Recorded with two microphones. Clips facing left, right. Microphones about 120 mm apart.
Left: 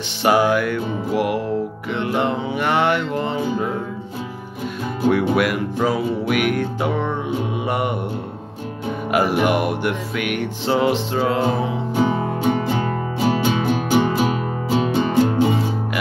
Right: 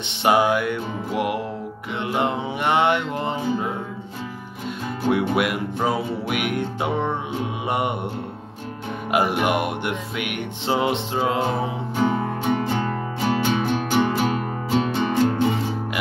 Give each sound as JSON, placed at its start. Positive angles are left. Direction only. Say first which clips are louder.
{"t": 0.2, "sound": "music", "louder": "left 2 dB", "side_deg": -20}
{"t": 5.3, "sound": "music", "louder": "left 3 dB", "side_deg": -25}
{"t": 9.1, "sound": "music", "louder": "left 2 dB", "side_deg": -20}
{"t": 11.9, "sound": "music", "louder": "left 2 dB", "side_deg": 10}